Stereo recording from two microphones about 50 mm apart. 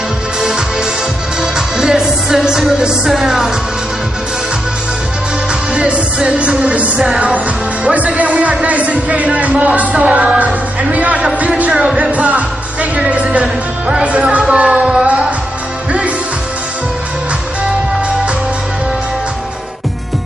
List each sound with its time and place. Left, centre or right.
1.4 s music: centre
5.8 s speech: right
10.4 s music: right
11.7 s music: centre
12.0 s music: right
14.0 s speech: right
14.5 s a sound: right